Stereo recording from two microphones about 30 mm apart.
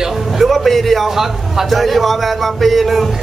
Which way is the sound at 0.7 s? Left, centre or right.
Centre.